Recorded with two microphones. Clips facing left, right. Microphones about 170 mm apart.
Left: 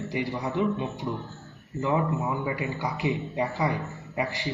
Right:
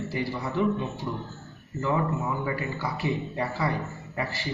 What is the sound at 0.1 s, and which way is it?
A man's voice, 15° left (ahead or behind).